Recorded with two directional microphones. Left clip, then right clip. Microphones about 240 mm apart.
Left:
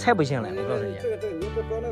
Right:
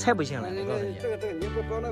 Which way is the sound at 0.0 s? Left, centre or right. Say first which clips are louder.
Left 4 dB; centre.